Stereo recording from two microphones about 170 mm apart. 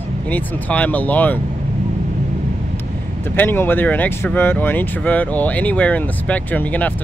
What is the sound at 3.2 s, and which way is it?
Speech, 10° left (ahead or behind).